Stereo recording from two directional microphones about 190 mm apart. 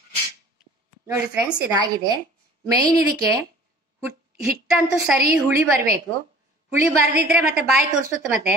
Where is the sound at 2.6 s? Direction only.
20° right (ahead or behind).